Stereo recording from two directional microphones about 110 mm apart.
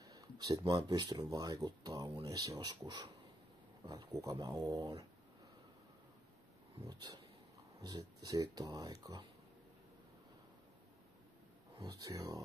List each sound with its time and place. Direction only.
0.0 s speech: 30° right (ahead or behind)
3.8 s speech: 30° right (ahead or behind)
6.9 s speech: 40° right (ahead or behind)
11.8 s speech: 30° right (ahead or behind)